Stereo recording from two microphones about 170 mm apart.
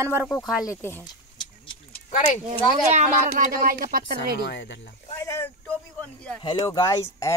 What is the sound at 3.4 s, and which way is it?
Speech, 55° right (ahead or behind).